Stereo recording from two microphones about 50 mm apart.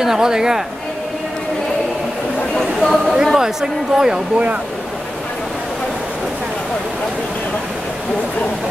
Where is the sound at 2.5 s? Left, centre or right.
Centre.